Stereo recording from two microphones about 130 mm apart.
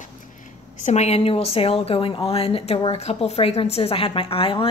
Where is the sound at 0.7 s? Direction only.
60° left (ahead or behind).